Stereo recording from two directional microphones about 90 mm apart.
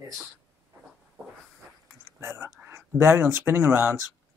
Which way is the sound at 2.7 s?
30° right (ahead or behind).